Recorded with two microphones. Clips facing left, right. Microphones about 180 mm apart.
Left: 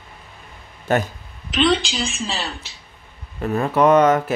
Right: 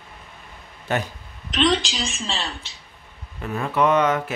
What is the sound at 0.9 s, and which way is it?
Speech, 45° left (ahead or behind).